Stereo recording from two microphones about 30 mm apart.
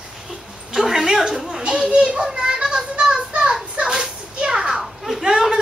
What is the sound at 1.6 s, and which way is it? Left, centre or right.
Speech, right.